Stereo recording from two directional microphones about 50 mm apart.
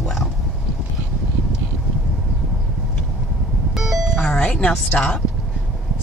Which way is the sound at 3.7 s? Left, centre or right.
Centre.